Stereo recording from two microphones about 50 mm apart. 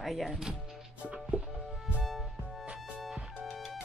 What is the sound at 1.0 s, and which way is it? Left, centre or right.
Music, right.